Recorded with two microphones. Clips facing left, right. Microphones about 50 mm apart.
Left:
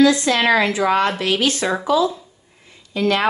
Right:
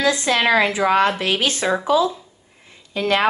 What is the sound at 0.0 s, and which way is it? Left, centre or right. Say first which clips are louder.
A woman's voice: left 3 dB; right.